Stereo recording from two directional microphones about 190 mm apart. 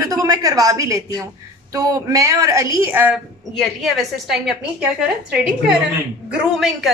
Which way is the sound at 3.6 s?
Centre (ahead or behind).